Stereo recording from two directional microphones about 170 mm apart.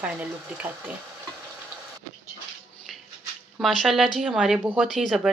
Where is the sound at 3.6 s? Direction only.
Centre (ahead or behind).